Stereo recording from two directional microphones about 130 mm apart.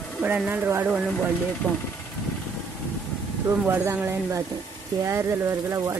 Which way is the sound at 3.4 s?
20° right (ahead or behind).